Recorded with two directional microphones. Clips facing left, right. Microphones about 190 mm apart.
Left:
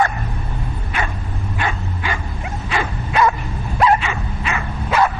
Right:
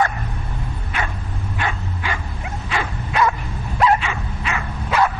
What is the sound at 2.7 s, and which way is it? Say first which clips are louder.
Dog: left 3 dB; 20° left (ahead or behind).